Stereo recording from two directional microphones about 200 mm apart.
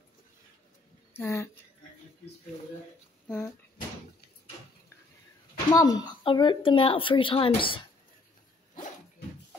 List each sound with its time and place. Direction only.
1.1 s speech: 10° left (ahead or behind)
3.3 s speech: 10° left (ahead or behind)
5.7 s a woman's voice: 20° left (ahead or behind)